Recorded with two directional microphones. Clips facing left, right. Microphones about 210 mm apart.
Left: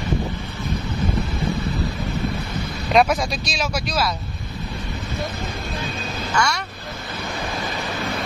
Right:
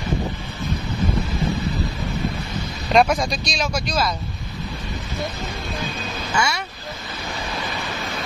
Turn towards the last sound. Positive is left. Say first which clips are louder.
# left 1 dB
turn(degrees=-5)  # may be behind; listen again after turning